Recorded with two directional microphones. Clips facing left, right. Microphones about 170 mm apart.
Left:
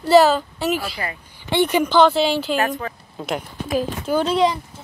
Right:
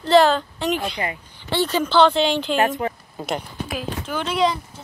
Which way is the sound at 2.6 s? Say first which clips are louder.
Right 2 dB; 20° right (ahead or behind).